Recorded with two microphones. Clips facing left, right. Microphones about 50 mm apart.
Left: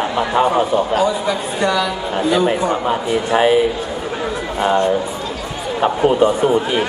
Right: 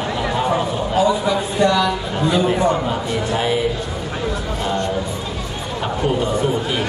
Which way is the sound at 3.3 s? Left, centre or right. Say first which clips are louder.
Left 7 dB; left.